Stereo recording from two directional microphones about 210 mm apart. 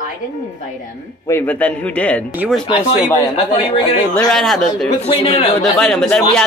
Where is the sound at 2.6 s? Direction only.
25° left (ahead or behind).